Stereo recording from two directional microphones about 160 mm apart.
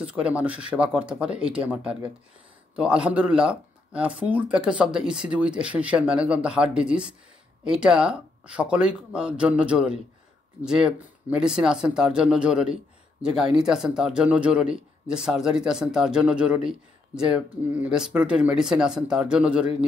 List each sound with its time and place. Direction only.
0.0 s speech: 10° right (ahead or behind)